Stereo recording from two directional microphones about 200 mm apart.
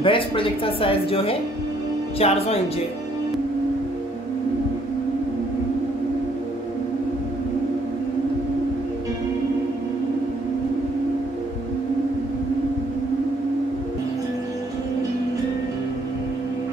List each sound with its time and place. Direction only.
0.0 s speech: 25° left (ahead or behind)